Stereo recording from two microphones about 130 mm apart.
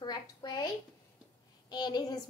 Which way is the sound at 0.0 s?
30° left (ahead or behind).